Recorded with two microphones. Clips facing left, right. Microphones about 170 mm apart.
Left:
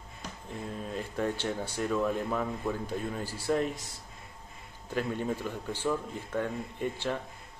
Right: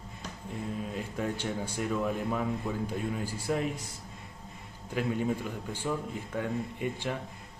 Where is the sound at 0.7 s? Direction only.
10° right (ahead or behind).